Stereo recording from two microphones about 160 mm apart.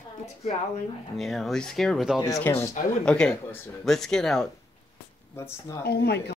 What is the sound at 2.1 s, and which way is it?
Speech, 20° left (ahead or behind).